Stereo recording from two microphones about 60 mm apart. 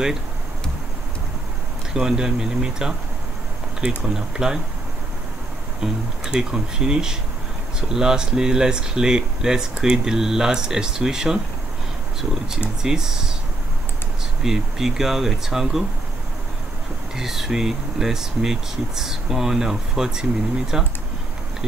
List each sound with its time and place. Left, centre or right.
2.0 s speech: centre
5.8 s speech: centre
14.4 s speech: centre
17.1 s speech: centre